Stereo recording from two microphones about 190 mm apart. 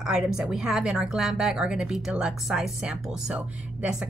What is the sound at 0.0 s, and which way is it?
A woman's voice, 5° right (ahead or behind).